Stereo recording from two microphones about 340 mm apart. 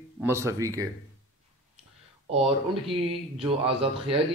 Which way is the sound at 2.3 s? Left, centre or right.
Centre.